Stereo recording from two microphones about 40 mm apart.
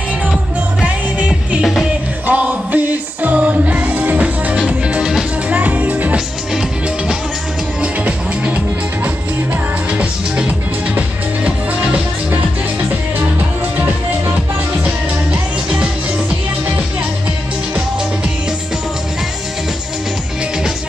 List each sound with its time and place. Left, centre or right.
0.8 s music: right
1.6 s music: centre
2.2 s music: right
7.8 s music: right
9.9 s music: right